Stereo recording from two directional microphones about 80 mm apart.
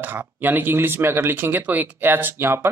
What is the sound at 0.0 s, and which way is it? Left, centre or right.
Speech, right.